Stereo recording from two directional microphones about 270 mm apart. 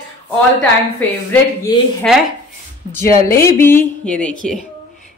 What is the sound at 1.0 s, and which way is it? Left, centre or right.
Speech, centre.